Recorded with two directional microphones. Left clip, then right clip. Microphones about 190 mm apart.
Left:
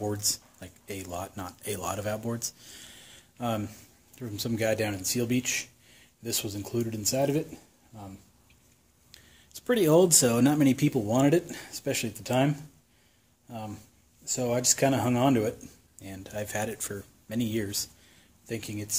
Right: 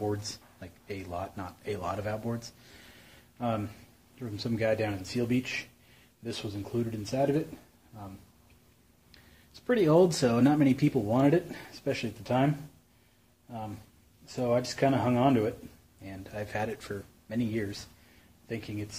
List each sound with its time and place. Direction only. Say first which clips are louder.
0.0 s speech: left 3 dB; 45° left (ahead or behind)
9.1 s speech: left 5 dB; 45° left (ahead or behind)
14.2 s speech: left 1 dB; 55° left (ahead or behind)